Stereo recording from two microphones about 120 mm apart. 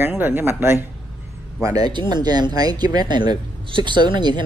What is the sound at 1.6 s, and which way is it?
Speech, 35° right (ahead or behind).